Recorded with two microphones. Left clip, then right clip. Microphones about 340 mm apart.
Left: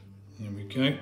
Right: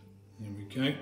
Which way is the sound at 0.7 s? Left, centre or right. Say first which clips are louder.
Left 4 dB; centre.